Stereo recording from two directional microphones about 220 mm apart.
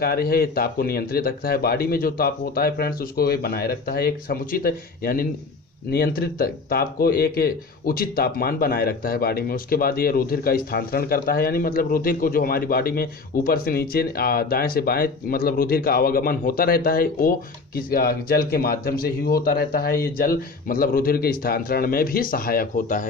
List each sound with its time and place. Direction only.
0.0 s speech: 45° left (ahead or behind)